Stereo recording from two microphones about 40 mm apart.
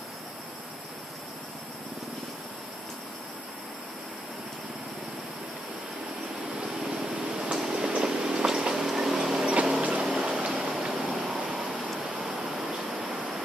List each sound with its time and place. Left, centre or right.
6.8 s vehicle: centre
9.8 s vehicle: right
10.1 s vehicle: centre